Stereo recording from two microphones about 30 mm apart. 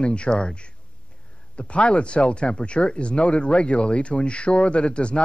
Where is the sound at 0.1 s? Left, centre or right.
Left.